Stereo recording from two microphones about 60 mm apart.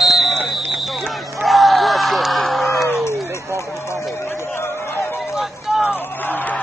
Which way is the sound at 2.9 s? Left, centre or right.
Left.